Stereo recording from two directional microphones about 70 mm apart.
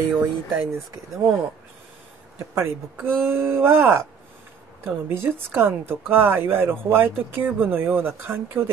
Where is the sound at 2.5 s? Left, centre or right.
Right.